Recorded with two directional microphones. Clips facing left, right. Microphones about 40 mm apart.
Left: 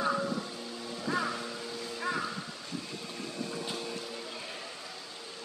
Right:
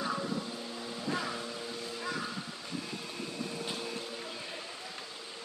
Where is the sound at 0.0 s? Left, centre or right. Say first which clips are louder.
Left 4 dB; centre.